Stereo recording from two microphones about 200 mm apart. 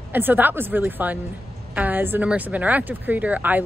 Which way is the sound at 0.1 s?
10° right (ahead or behind).